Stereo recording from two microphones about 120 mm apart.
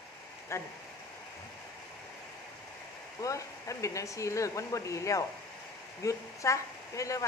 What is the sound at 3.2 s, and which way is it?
Speech, 25° left (ahead or behind).